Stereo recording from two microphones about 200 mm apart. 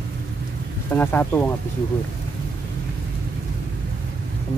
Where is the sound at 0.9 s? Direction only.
10° left (ahead or behind).